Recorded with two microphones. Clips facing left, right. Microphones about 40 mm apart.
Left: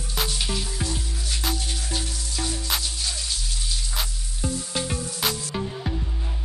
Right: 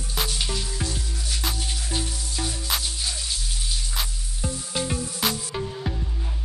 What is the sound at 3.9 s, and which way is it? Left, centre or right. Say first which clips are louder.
Music: even; centre.